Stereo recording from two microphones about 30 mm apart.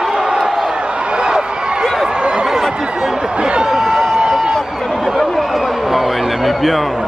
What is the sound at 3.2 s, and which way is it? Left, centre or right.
Chatter, right.